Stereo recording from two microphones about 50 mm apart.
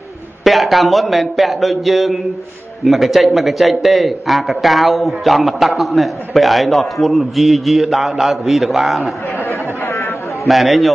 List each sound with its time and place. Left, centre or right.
0.4 s a man's voice: centre
9.4 s chatter: left
10.4 s a man's voice: centre